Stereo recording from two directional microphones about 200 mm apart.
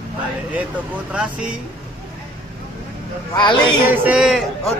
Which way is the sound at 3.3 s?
25° left (ahead or behind).